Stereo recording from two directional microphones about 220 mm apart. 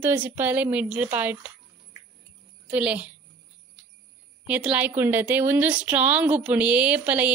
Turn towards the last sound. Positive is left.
turn(degrees=-5)  # may be behind; listen again after turning